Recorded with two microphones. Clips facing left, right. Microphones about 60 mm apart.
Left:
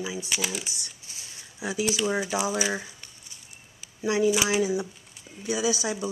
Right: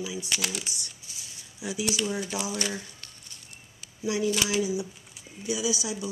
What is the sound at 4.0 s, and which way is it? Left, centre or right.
Speech, left.